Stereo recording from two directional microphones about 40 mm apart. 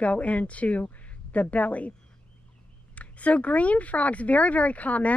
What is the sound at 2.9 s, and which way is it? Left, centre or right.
A woman's voice, left.